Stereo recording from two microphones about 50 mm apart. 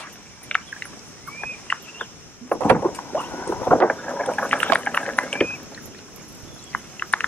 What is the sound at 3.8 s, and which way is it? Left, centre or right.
Vehicle, left.